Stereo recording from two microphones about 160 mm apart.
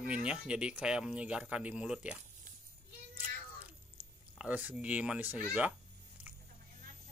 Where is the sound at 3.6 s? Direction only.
10° right (ahead or behind).